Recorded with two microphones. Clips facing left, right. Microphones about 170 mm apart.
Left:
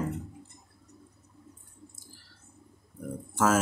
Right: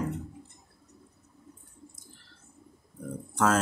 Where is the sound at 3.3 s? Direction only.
5° left (ahead or behind).